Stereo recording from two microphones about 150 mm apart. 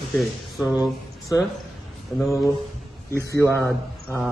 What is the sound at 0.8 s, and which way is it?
Speech, 20° left (ahead or behind).